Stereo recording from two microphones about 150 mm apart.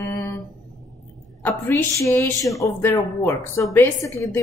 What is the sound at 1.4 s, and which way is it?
A woman's voice, 15° left (ahead or behind).